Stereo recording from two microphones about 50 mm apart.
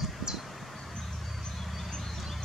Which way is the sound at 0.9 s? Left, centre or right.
Centre.